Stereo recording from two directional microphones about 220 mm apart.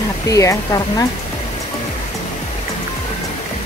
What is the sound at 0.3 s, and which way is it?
Speech, 15° left (ahead or behind).